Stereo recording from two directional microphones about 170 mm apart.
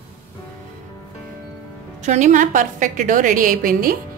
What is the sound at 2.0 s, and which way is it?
A woman's voice, 45° right (ahead or behind).